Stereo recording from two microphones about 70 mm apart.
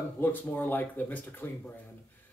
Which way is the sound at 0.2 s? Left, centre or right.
Left.